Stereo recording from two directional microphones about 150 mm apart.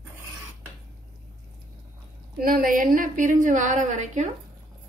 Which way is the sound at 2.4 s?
75° right (ahead or behind).